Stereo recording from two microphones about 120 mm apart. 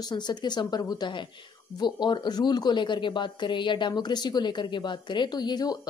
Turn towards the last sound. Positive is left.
turn(degrees=35)  # may be behind; listen again after turning